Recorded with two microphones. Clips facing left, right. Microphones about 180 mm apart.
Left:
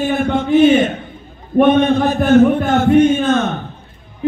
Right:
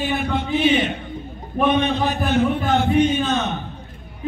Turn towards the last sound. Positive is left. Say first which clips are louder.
# left 6 dB
turn(degrees=50)  # may be behind; listen again after turning